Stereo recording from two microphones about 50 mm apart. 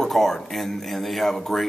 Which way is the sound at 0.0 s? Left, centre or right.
Centre.